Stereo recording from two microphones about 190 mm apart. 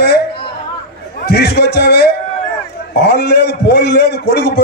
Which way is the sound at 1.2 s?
60° left (ahead or behind).